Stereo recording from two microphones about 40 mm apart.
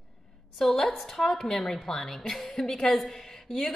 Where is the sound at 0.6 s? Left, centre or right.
Centre.